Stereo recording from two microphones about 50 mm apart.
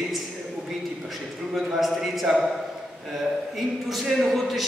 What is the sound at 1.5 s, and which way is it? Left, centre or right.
Speech, centre.